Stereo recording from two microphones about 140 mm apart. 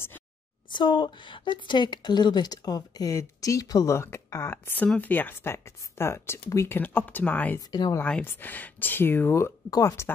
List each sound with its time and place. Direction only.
0.7 s a woman's voice: 35° left (ahead or behind); by 7.6 s 10° left (ahead or behind)
7.7 s a woman's voice: 30° left (ahead or behind)
8.0 s speech: 10° left (ahead or behind)